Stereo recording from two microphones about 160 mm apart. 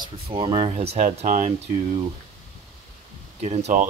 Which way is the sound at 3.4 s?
45° right (ahead or behind).